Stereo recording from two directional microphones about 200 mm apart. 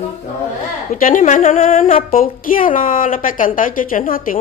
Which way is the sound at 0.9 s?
40° left (ahead or behind).